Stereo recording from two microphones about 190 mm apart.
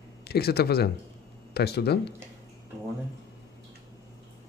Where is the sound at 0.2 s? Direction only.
55° left (ahead or behind).